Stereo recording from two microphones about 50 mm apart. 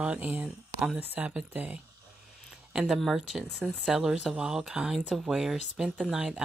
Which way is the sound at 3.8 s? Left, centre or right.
Centre.